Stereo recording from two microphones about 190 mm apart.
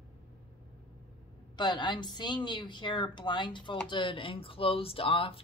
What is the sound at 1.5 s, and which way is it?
Speech, 20° left (ahead or behind).